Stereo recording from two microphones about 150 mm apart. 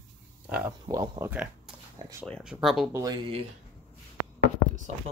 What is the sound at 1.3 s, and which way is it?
Speech, 10° right (ahead or behind).